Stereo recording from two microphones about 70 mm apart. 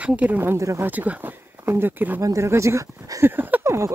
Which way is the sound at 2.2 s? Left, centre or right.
Right.